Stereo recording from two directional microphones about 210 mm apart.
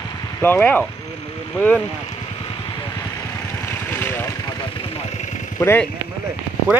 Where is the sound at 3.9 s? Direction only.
10° left (ahead or behind).